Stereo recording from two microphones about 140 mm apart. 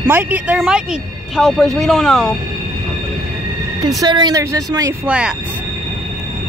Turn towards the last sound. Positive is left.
turn(degrees=-10)  # may be behind; listen again after turning